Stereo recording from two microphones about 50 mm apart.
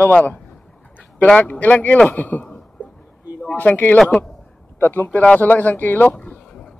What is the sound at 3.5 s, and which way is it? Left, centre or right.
Speech, left.